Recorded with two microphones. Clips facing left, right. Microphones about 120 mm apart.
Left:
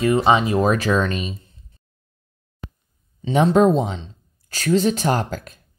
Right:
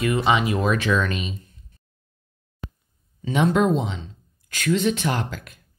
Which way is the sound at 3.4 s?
35° left (ahead or behind).